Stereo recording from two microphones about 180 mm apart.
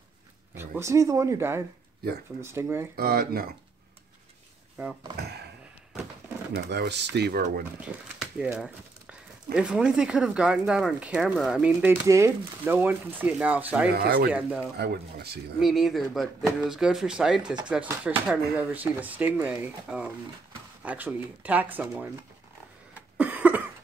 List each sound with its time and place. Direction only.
0.6 s speech: 15° right (ahead or behind)
3.0 s speech: 55° right (ahead or behind)
4.8 s speech: 10° right (ahead or behind)
6.5 s speech: 70° right (ahead or behind)
7.8 s speech: 5° right (ahead or behind)
13.9 s speech: 60° right (ahead or behind)
15.6 s speech: centre (ahead or behind)
22.9 s cough: 10° right (ahead or behind)